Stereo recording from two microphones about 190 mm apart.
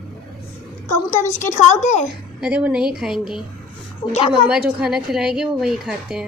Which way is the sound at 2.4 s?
5° right (ahead or behind).